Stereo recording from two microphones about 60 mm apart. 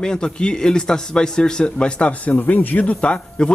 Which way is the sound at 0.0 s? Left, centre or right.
Centre.